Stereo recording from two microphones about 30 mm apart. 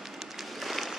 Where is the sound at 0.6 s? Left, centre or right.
Centre.